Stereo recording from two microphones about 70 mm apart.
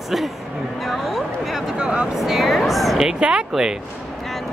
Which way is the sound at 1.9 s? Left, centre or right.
Centre.